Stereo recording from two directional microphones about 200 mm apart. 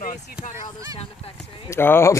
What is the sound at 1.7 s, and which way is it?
Speech, 10° left (ahead or behind).